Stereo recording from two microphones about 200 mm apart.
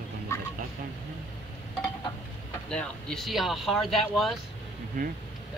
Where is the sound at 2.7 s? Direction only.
5° left (ahead or behind).